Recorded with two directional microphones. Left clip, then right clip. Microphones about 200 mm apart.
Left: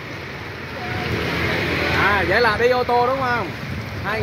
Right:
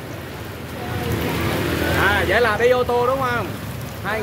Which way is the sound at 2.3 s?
50° left (ahead or behind).